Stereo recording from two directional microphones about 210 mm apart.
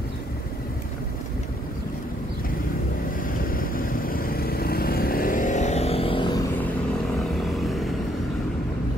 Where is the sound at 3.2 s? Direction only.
45° left (ahead or behind); by 6.7 s 15° left (ahead or behind).